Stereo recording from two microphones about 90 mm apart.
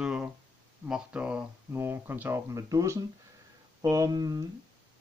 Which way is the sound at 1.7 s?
25° right (ahead or behind).